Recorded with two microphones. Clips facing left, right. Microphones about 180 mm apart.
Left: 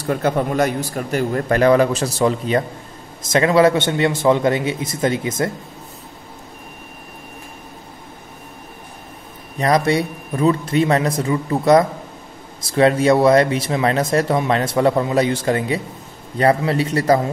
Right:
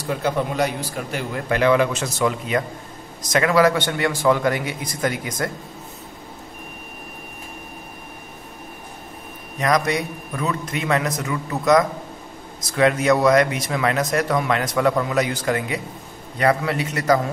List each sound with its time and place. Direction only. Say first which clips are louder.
0.0 s speech: left 4 dB; 50° left (ahead or behind); by 5.5 s 25° left (ahead or behind)
9.6 s speech: left 4 dB; 30° left (ahead or behind)